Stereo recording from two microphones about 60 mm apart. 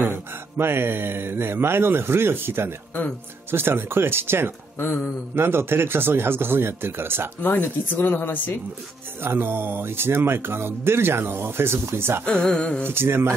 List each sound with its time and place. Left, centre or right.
0.0 s speech: right
4.7 s a woman's voice: left
5.3 s speech: right
7.6 s a woman's voice: left
9.2 s speech: right
12.3 s a sound: centre
12.8 s speech: right